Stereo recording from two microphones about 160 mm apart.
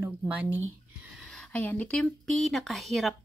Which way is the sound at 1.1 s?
5° left (ahead or behind).